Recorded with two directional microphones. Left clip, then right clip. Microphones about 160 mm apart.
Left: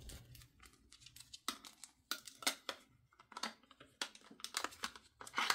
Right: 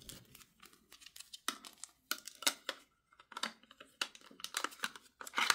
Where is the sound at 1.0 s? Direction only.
25° right (ahead or behind).